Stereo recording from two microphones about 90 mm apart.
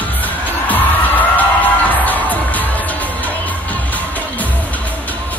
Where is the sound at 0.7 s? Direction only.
20° left (ahead or behind).